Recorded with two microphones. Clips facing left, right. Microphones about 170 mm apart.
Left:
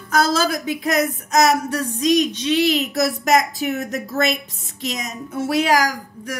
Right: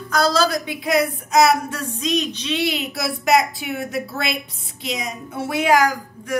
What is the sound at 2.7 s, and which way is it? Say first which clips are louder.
Speech: left 5 dB; 40° left (ahead or behind).